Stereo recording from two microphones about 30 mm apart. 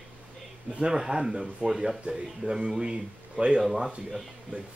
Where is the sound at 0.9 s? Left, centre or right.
Right.